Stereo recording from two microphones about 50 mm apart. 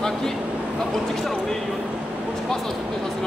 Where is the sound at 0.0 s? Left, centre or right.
Centre.